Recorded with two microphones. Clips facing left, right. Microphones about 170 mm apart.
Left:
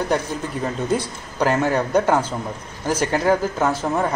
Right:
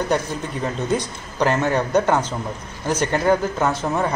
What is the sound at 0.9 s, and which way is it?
Speech, 5° left (ahead or behind).